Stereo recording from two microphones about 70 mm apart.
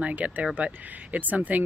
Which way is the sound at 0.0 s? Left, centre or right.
Centre.